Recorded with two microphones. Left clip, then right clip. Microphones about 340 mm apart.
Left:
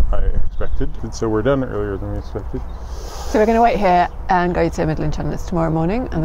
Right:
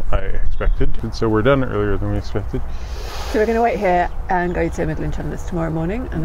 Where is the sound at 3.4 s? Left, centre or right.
Left.